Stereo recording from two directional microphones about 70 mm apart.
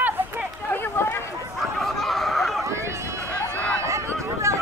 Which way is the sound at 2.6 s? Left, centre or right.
Right.